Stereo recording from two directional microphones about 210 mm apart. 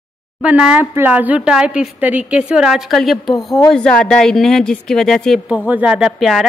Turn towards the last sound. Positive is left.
turn(degrees=0)  # may be behind; listen again after turning